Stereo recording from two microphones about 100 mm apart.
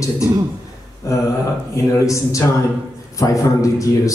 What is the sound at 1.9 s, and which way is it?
A man's voice, 35° left (ahead or behind).